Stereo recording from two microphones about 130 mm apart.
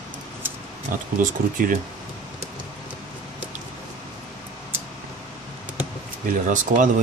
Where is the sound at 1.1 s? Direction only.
90° right.